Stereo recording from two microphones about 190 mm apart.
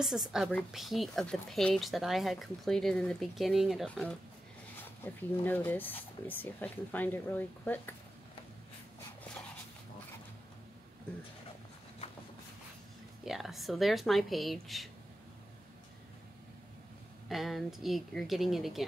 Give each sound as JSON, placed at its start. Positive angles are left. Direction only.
{"t": 0.0, "sound": "a woman's voice", "side_deg": -5}
{"t": 13.2, "sound": "a woman's voice", "side_deg": 0}
{"t": 17.3, "sound": "a woman's voice", "side_deg": 0}